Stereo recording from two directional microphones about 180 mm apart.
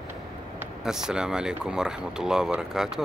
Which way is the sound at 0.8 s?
5° right (ahead or behind).